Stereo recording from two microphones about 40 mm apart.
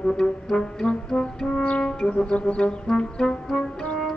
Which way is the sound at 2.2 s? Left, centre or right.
Left.